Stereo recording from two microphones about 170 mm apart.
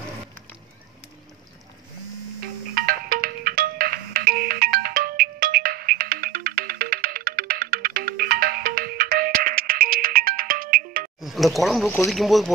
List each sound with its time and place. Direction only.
2.7 s music: 60° right (ahead or behind)
11.1 s a sound: centre (ahead or behind)
12.1 s speech: centre (ahead or behind)